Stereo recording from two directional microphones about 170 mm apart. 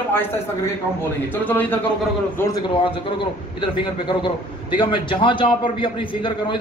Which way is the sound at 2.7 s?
30° left (ahead or behind).